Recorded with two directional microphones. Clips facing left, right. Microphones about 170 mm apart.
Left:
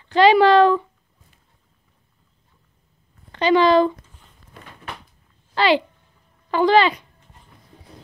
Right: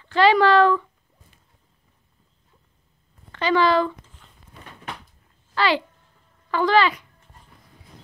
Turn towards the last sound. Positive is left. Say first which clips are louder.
# left 3 dB
turn(degrees=25)  # may be behind; listen again after turning